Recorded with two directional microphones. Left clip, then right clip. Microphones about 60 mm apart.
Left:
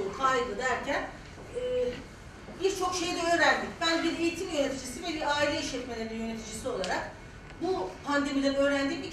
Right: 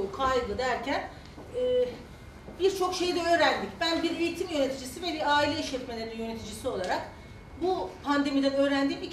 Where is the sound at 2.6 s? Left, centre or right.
Left.